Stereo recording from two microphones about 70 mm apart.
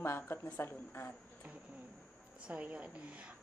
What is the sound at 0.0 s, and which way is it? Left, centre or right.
Speech, left.